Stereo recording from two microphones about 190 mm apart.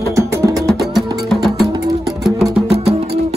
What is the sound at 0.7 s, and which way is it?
Music, centre (ahead or behind).